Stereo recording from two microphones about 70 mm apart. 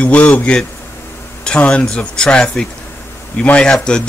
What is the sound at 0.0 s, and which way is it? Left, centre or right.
Speech, left.